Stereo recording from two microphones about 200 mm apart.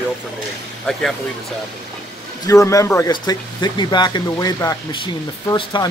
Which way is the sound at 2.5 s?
15° left (ahead or behind).